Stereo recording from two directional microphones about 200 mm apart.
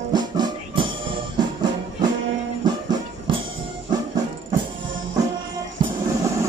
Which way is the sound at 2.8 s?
25° right (ahead or behind).